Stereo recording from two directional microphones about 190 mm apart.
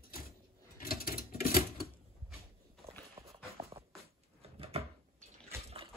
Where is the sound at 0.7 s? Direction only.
50° left (ahead or behind).